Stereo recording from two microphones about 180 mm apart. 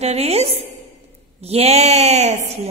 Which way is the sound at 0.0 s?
35° right (ahead or behind).